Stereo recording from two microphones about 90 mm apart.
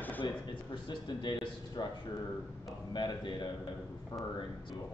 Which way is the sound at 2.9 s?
55° left (ahead or behind).